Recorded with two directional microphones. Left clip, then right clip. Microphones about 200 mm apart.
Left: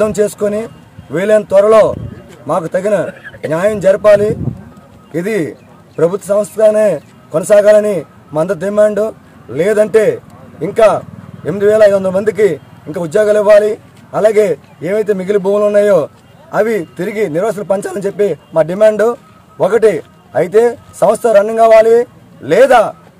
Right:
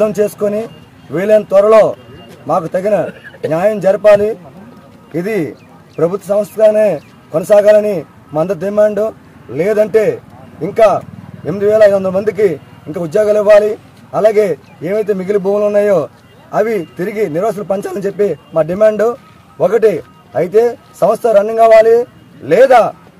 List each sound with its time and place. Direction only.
0.0 s a man's voice: 5° left (ahead or behind)
12.0 s a man's voice: 15° left (ahead or behind)